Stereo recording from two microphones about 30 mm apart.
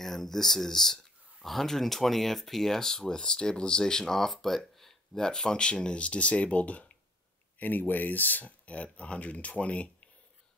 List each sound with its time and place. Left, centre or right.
0.0 s speech: centre
1.4 s speech: centre; by 3.8 s left
3.8 s speech: centre
5.1 s speech: left
6.0 s speech: left
7.5 s speech: left
8.5 s speech: left